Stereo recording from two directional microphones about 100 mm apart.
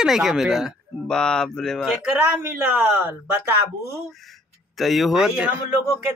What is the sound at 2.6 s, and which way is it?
Speech, 10° right (ahead or behind).